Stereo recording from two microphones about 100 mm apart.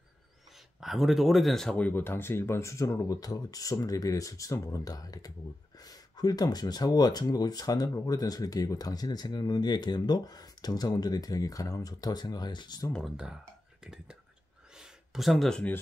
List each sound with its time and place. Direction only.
0.7 s speech: centre (ahead or behind)
1.8 s speech: 20° left (ahead or behind); by 12.9 s 45° left (ahead or behind)
13.1 s speech: 10° right (ahead or behind)
14.8 s a sound: centre (ahead or behind)